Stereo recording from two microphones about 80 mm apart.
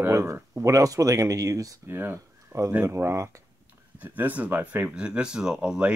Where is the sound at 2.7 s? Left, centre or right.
Right.